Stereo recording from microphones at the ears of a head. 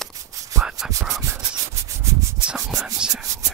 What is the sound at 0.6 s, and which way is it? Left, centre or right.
Rub, right.